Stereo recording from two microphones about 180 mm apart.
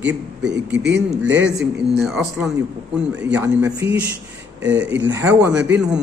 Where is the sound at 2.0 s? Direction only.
5° right (ahead or behind).